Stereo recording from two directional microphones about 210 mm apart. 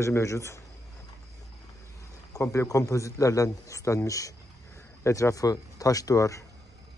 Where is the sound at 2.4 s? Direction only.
15° left (ahead or behind).